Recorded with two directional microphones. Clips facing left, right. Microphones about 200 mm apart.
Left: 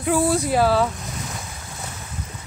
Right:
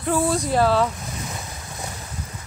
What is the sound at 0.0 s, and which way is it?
Speech, 5° left (ahead or behind).